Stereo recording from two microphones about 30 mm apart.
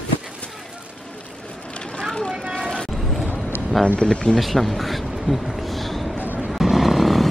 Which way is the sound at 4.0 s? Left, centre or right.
Left.